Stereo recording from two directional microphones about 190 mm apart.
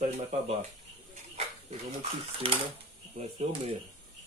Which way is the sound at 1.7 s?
30° right (ahead or behind).